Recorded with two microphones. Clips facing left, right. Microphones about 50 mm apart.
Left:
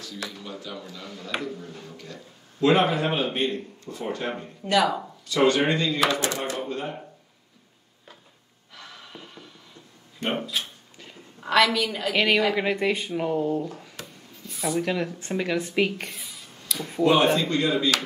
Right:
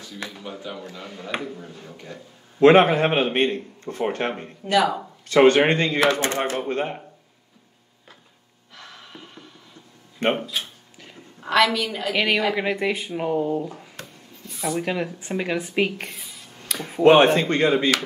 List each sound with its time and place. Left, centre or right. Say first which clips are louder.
0.0 s a sound: right 1 dB; right
0.9 s a man's voice: right 1 dB; right
2.6 s speech: right 6 dB; right
4.6 s speech: right 2 dB; centre
5.3 s speech: right 6 dB; right
8.7 s music: right 1 dB; centre
10.4 s speech: right 1 dB; centre
14.8 s speech: even; centre
16.7 s speech: right 6 dB; right